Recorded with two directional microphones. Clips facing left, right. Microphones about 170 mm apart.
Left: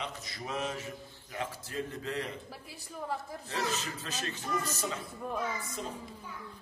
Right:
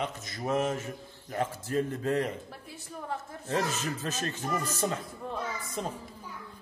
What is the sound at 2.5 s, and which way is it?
Speech, centre (ahead or behind).